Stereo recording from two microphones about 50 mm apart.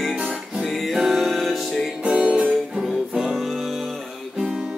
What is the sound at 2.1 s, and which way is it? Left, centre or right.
Music, right.